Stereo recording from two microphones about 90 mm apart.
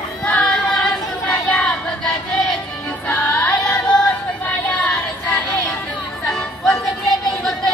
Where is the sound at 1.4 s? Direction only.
15° left (ahead or behind).